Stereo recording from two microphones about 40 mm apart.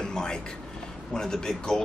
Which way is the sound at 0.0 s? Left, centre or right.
Centre.